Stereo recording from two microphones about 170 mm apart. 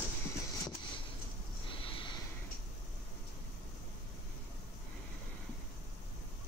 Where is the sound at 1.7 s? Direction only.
30° left (ahead or behind).